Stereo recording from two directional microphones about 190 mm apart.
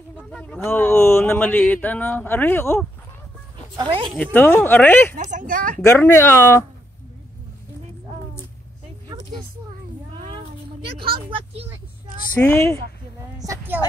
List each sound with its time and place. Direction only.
0.2 s speech: 5° left (ahead or behind)
3.7 s speech: 25° right (ahead or behind)
4.2 s speech: 10° left (ahead or behind)
5.1 s speech: 45° right (ahead or behind)
5.9 s speech: 15° left (ahead or behind)
10.1 s a sound: 25° right (ahead or behind)
11.1 s speech: 30° right (ahead or behind)
12.4 s speech: 10° left (ahead or behind)
13.4 s speech: 15° right (ahead or behind)